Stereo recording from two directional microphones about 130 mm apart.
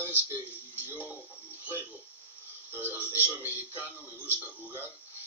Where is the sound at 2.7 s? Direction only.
15° right (ahead or behind).